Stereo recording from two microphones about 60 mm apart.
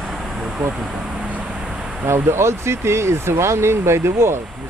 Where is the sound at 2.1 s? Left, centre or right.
Right.